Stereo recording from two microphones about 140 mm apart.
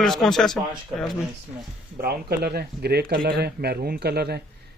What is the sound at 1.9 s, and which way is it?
Speech, 90° right.